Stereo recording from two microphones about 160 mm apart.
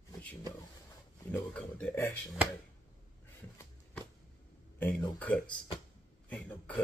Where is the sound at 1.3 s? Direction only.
10° left (ahead or behind).